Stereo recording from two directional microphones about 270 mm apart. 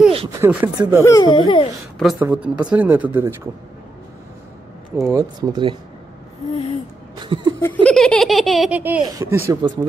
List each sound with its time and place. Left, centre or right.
0.1 s a sound: right
0.4 s speech: centre
1.0 s speech: centre
2.0 s speech: centre
4.9 s speech: centre
7.2 s laughter: centre
7.6 s speech: centre